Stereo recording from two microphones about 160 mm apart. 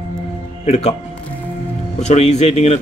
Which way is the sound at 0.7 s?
40° left (ahead or behind).